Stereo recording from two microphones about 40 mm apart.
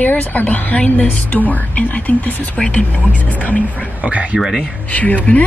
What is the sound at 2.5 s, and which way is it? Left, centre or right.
Speech, left.